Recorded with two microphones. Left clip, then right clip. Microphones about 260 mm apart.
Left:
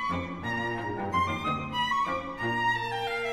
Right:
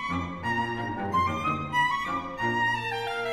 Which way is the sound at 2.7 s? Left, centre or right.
Right.